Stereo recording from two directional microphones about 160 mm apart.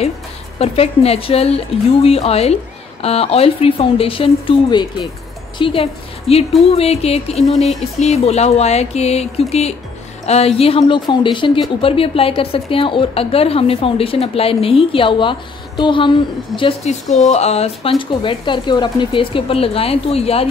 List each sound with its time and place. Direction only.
0.6 s a woman's voice: 40° left (ahead or behind)